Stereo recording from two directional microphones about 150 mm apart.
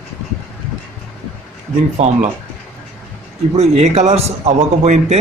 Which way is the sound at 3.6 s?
45° right (ahead or behind).